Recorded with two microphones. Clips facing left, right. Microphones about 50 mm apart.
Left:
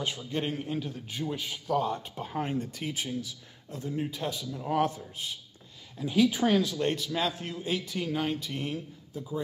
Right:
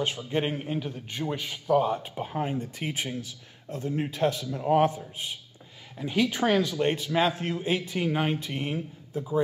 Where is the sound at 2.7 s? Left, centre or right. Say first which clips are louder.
Right 2 dB; right.